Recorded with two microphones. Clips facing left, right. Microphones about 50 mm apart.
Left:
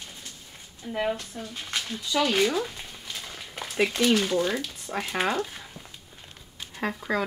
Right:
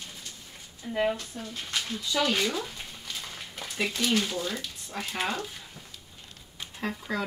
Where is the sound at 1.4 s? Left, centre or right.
Centre.